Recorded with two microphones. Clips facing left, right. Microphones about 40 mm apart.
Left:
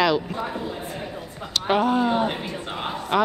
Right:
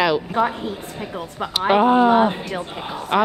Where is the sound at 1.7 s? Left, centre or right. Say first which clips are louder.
Right 6 dB; right.